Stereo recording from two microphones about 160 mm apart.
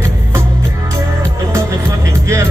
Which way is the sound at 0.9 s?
20° right (ahead or behind).